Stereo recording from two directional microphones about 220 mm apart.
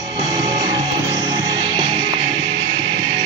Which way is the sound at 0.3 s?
20° right (ahead or behind).